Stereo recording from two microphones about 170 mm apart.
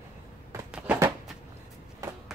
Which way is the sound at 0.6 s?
5° right (ahead or behind).